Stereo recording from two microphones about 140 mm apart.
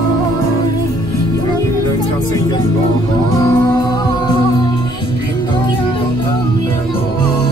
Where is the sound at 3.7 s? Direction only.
30° left (ahead or behind).